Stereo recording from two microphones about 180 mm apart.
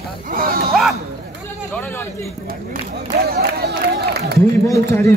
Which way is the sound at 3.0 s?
60° right (ahead or behind).